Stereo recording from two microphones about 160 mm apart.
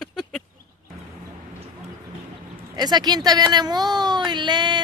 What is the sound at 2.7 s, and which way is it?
Speech, 25° right (ahead or behind).